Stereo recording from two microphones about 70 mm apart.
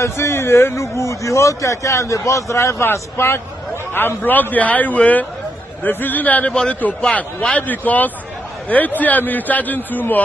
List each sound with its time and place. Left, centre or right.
0.0 s a man's voice: left
6.5 s a man's voice: centre
7.6 s a man's voice: left